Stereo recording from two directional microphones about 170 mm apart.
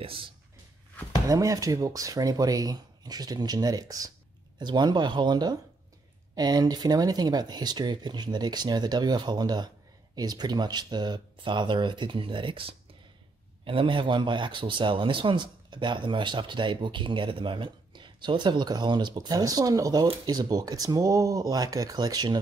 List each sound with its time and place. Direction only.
0.0 s speech: 30° right (ahead or behind)
1.2 s speech: 20° right (ahead or behind)